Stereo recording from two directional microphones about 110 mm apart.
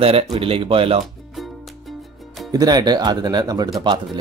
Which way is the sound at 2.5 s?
35° right (ahead or behind).